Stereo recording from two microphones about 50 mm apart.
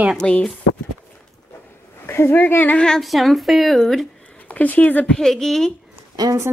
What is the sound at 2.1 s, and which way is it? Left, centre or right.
Speech, left.